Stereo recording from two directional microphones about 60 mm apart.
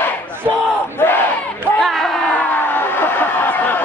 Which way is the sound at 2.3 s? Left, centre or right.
Left.